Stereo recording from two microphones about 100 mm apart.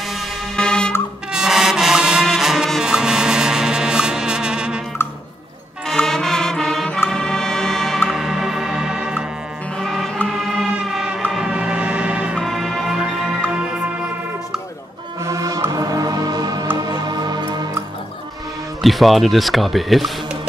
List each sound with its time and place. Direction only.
0.6 s music: 5° left (ahead or behind)
1.3 s music: 5° right (ahead or behind)
5.9 s music: 5° left (ahead or behind)
9.8 s music: 5° left (ahead or behind)
12.4 s music: centre (ahead or behind)
15.2 s music: 35° right (ahead or behind)
18.8 s speech: centre (ahead or behind)